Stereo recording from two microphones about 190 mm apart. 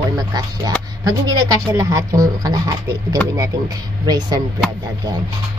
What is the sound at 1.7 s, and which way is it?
Speech, 15° right (ahead or behind).